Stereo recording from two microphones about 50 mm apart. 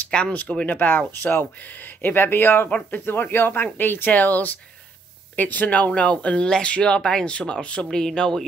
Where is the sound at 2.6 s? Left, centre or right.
Left.